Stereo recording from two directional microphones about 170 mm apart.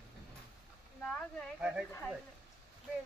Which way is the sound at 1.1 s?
5° right (ahead or behind).